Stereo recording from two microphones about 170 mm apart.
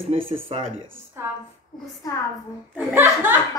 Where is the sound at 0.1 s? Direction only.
35° right (ahead or behind).